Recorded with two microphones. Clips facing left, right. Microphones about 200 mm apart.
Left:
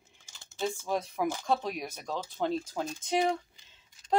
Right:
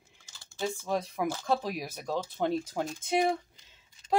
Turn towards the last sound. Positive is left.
turn(degrees=-10)  # may be behind; listen again after turning